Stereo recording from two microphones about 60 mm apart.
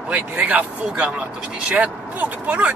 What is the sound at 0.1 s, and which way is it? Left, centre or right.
Speech, right.